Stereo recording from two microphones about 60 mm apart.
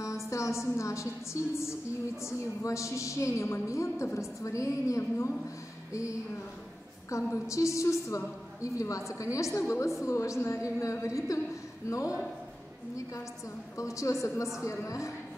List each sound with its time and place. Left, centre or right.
0.0 s a woman's voice: left
7.1 s a woman's voice: left
13.7 s a woman's voice: left